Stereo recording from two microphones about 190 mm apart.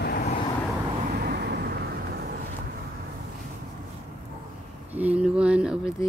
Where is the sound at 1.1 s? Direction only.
55° right (ahead or behind).